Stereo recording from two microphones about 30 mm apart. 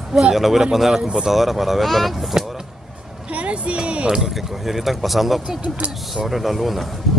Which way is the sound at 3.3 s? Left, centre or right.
Right.